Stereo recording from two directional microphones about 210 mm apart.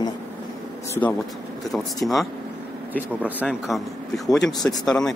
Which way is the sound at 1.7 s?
Centre (ahead or behind).